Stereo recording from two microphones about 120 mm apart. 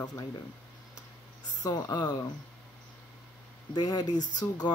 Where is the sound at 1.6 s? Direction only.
35° left (ahead or behind).